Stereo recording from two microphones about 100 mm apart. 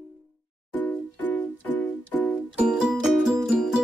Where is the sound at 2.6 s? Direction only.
10° right (ahead or behind).